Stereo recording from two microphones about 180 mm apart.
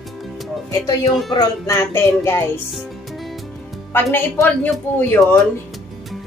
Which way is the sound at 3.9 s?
15° left (ahead or behind).